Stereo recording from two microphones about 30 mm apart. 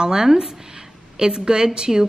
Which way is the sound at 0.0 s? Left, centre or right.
Right.